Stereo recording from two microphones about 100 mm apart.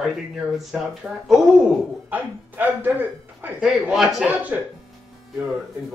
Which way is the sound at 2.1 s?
15° right (ahead or behind).